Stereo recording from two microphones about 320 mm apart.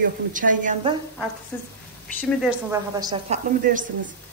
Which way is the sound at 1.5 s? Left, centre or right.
Centre.